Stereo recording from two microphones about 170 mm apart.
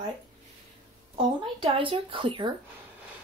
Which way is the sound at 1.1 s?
30° right (ahead or behind).